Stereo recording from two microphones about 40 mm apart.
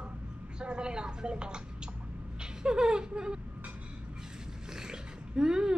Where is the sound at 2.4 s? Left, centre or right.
Centre.